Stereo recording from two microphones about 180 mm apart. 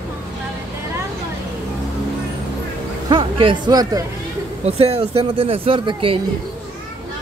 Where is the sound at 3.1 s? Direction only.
25° right (ahead or behind).